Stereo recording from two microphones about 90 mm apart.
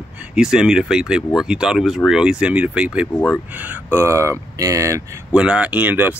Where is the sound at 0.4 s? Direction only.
5° right (ahead or behind).